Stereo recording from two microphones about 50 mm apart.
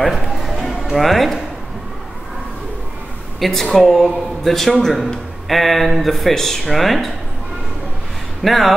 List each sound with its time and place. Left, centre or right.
0.0 s music: centre
3.3 s speech: centre
8.4 s speech: centre